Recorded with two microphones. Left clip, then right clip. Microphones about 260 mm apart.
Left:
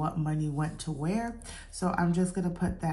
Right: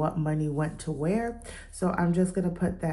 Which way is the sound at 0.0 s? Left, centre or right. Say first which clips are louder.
Right 4 dB; centre.